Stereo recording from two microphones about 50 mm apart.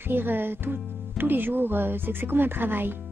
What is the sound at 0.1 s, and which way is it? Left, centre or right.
Speech, right.